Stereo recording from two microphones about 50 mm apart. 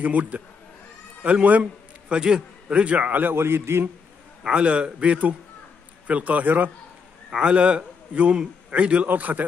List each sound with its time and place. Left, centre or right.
0.0 s a man's voice: right
2.0 s a man's voice: centre
3.2 s a man's voice: right
4.4 s a man's voice: right
7.2 s a man's voice: centre; by 9.5 s right